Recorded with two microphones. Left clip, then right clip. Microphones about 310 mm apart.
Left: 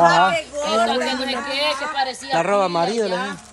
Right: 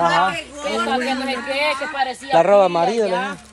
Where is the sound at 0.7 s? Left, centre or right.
Left.